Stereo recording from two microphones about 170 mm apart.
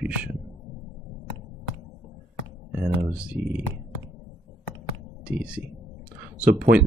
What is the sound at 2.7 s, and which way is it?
Speech, 10° right (ahead or behind).